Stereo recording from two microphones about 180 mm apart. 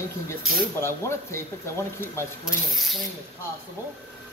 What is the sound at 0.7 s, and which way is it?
Speech, 15° left (ahead or behind).